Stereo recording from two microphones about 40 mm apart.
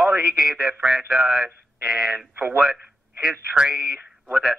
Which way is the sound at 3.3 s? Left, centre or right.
Right.